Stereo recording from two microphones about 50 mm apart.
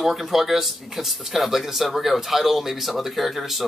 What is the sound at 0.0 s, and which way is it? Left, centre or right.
Speech, centre.